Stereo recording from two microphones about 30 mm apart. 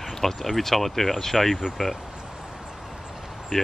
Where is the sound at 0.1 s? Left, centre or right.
Centre.